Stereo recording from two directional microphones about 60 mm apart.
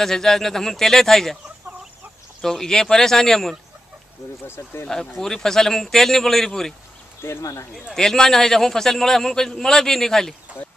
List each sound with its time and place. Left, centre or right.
0.0 s a man's voice: centre
2.4 s a man's voice: centre
4.5 s speech: left
4.8 s a man's voice: centre
7.2 s speech: left
7.9 s a man's voice: centre